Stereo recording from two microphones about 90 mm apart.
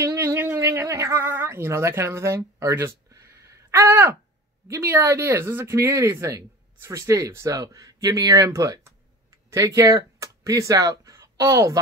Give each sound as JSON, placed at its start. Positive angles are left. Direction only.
{"t": 0.0, "sound": "a sound", "side_deg": -30}
{"t": 1.2, "sound": "speech", "side_deg": -25}
{"t": 3.9, "sound": "speech", "side_deg": -20}